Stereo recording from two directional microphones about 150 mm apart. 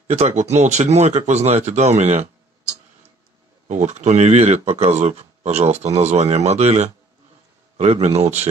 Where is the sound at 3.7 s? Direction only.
50° right (ahead or behind).